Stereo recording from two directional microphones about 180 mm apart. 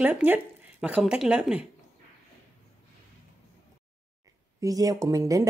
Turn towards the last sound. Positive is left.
turn(degrees=-20)  # may be behind; listen again after turning